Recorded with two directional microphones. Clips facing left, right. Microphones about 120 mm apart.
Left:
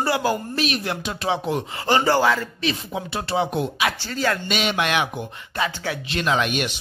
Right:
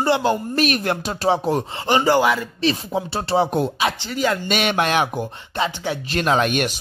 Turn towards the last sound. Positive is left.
turn(degrees=-45)  # may be behind; listen again after turning